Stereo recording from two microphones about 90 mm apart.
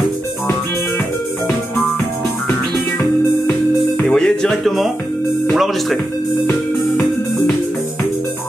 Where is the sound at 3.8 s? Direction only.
5° left (ahead or behind).